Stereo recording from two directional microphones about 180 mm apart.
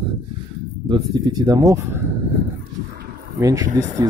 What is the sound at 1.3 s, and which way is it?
Speech, 20° right (ahead or behind).